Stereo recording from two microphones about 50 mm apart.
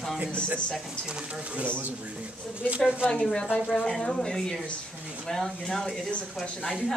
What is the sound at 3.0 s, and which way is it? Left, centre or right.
A woman's voice, left.